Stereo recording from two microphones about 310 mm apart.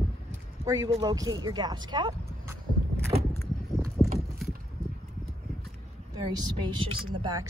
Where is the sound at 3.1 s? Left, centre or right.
Centre.